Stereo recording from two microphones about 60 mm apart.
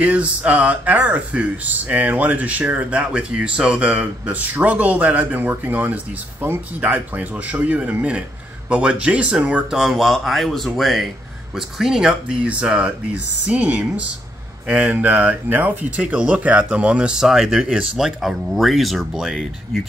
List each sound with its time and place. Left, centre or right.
0.0 s speech: right
9.8 s speech: centre